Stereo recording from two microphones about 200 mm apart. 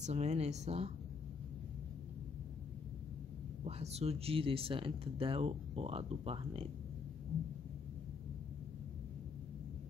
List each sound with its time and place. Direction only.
0.0 s speech: 35° right (ahead or behind)
3.6 s speech: 30° right (ahead or behind)